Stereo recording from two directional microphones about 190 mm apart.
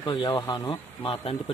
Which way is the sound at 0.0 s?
25° left (ahead or behind).